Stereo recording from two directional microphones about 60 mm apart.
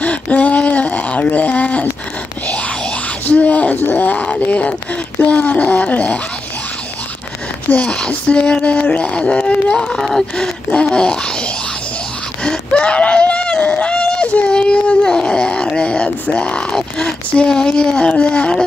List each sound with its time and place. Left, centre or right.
0.0 s a sound: left
2.4 s groan: left
5.2 s speech: left
7.7 s speech: centre